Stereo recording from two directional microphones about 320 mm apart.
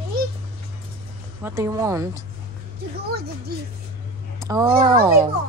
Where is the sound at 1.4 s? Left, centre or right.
Centre.